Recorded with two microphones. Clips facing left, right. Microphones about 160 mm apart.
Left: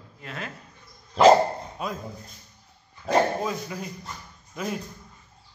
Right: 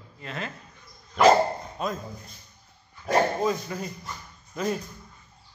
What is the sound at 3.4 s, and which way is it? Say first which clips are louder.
Speech: right 3 dB; 5° left (ahead or behind).